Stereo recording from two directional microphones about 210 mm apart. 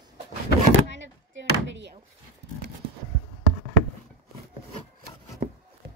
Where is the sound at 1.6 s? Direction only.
60° right (ahead or behind).